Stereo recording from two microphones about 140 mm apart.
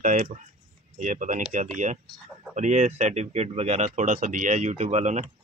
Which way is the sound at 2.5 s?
55° right (ahead or behind).